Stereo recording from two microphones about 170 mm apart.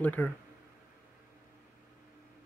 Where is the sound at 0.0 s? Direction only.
10° left (ahead or behind).